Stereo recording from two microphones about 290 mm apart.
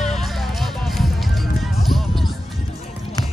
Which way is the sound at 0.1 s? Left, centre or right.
Centre.